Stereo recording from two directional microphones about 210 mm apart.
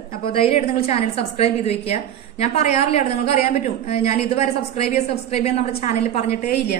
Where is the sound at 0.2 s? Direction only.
25° left (ahead or behind).